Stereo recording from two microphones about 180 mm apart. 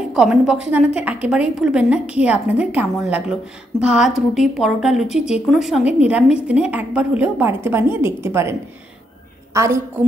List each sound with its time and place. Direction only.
0.1 s a woman's voice: 5° right (ahead or behind)